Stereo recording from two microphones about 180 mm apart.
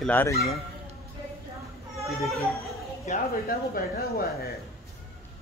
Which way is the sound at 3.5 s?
60° left (ahead or behind).